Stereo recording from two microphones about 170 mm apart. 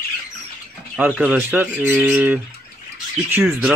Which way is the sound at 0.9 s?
5° right (ahead or behind).